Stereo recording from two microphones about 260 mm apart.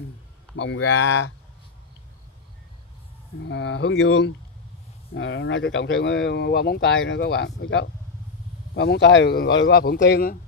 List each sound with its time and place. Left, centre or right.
0.6 s speech: left
3.3 s speech: left